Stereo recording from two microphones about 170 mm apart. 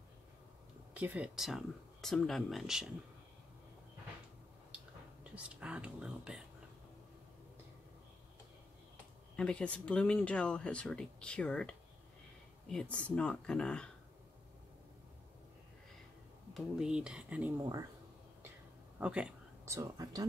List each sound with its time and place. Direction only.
0.9 s speech: 10° right (ahead or behind)
5.3 s speech: 5° right (ahead or behind)
9.4 s speech: 5° left (ahead or behind)
16.5 s speech: 5° right (ahead or behind)
17.6 s speech: 20° right (ahead or behind)
18.9 s speech: 5° right (ahead or behind)